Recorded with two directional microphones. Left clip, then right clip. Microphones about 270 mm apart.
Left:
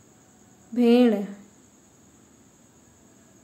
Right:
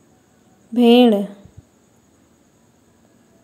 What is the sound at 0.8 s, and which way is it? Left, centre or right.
Speech, right.